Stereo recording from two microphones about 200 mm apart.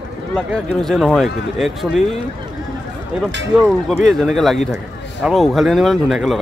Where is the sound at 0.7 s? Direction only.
Centre (ahead or behind).